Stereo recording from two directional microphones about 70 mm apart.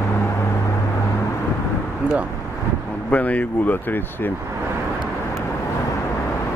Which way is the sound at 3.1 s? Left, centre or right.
Left.